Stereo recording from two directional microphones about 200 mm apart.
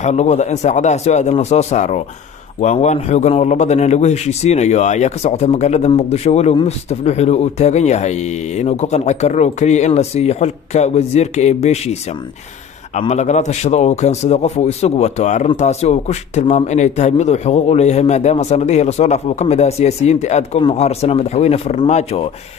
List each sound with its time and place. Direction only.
0.0 s a man's voice: 35° left (ahead or behind)